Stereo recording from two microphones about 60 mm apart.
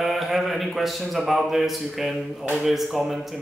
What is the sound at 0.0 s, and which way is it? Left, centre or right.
A man's voice, centre.